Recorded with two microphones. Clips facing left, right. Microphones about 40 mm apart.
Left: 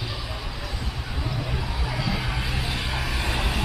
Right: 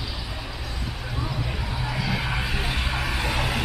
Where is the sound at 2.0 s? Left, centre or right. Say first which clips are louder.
Right 2 dB; right.